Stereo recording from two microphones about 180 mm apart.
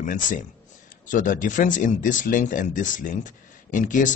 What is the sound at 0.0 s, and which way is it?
Speech, 45° left (ahead or behind).